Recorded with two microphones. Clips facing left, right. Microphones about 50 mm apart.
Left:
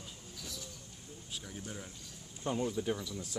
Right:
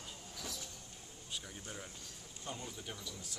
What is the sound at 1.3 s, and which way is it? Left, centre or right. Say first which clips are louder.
Speech: left 2 dB; centre.